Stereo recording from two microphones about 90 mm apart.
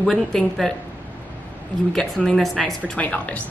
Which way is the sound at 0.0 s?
5° left (ahead or behind).